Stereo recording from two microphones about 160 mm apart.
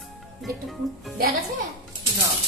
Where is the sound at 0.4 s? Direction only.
Centre (ahead or behind).